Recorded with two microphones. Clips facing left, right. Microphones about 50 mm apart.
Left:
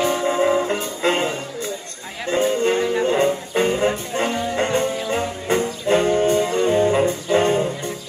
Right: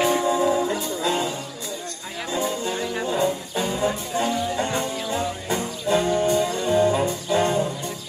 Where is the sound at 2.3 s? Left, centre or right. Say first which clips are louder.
Left 8 dB; left.